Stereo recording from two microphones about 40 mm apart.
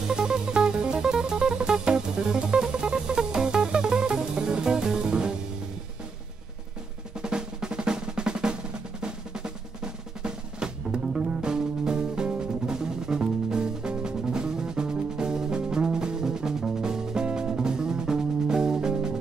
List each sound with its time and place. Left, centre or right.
0.1 s music: centre
7.2 s drum: centre
10.2 s music: centre